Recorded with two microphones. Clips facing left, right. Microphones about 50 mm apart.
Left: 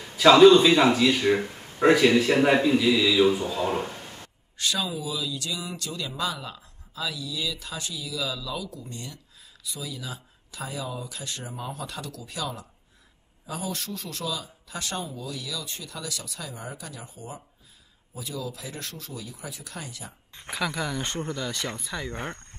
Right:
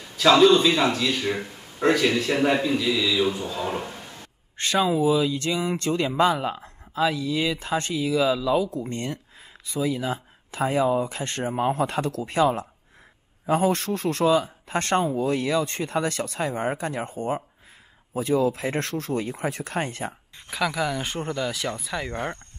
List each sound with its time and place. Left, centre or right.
0.0 s a man's voice: centre
4.6 s speech: right
20.3 s a man's voice: centre
22.0 s speech: centre